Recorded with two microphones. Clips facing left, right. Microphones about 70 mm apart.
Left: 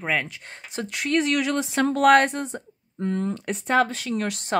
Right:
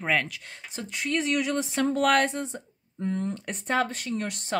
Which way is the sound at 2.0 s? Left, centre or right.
Left.